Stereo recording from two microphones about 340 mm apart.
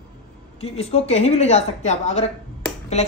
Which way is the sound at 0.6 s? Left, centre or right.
Centre.